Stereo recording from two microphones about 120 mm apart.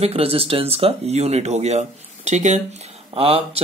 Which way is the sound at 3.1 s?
55° right (ahead or behind).